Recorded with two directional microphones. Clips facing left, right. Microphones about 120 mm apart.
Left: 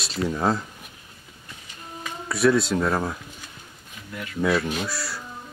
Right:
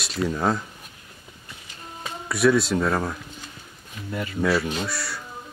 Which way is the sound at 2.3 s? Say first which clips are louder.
Even; centre (ahead or behind).